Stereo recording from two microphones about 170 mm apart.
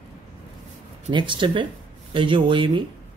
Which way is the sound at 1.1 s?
30° right (ahead or behind).